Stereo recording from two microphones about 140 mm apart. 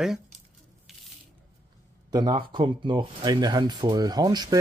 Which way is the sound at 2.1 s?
30° right (ahead or behind).